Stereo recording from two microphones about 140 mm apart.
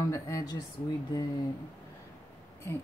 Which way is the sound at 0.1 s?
25° left (ahead or behind).